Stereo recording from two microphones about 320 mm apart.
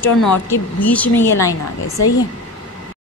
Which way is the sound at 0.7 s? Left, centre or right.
Centre.